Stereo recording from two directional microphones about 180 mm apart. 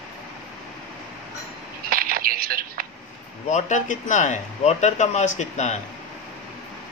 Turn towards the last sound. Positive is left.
turn(degrees=40)  # may be behind; listen again after turning